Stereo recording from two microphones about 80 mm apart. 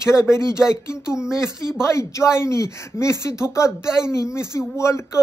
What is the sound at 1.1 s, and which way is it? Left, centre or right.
Speech, centre.